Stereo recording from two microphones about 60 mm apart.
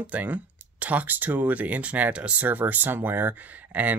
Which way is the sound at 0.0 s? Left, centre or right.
Right.